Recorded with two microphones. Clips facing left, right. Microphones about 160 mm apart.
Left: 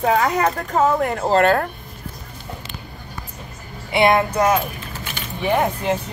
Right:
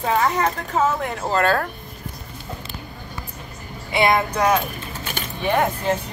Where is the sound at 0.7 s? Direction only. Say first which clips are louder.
Left 4 dB; 40° left (ahead or behind).